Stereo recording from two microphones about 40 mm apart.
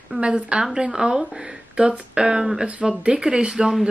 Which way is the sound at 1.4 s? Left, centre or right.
Centre.